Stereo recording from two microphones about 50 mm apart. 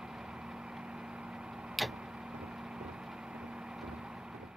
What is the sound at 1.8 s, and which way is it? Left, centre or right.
Tick-tock, centre.